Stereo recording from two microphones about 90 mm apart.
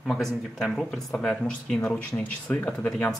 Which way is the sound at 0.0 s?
5° left (ahead or behind).